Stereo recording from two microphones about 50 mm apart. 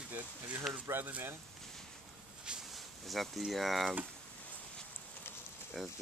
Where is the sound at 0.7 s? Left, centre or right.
Centre.